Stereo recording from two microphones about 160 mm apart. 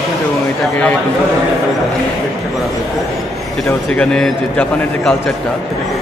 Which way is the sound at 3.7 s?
5° left (ahead or behind).